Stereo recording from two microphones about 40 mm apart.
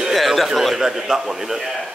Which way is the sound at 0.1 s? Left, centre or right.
Centre.